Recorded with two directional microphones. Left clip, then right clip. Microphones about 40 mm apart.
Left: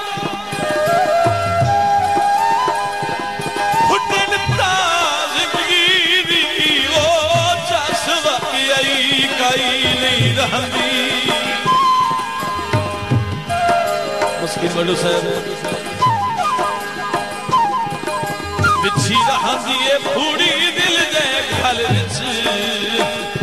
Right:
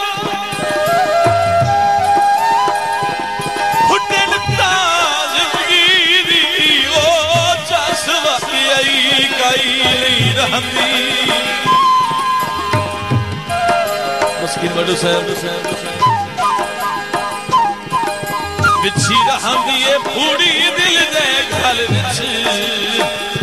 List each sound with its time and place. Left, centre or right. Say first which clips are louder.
0.7 s music: right 1 dB; left
13.6 s music: right 1 dB; left
14.8 s a man's voice: right 2 dB; left
16.0 s music: right 2 dB; left
18.6 s music: right 2 dB; left